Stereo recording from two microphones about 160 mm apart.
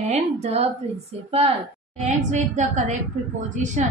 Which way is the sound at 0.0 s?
40° right (ahead or behind).